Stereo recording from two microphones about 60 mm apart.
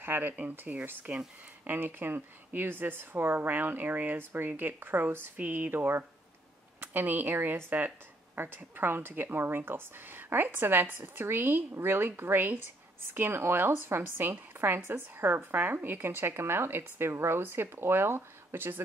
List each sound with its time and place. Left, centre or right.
0.0 s a woman's voice: right